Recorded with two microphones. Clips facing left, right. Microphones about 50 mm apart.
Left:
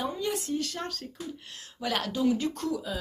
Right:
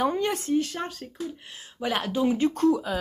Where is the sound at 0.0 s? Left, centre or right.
Right.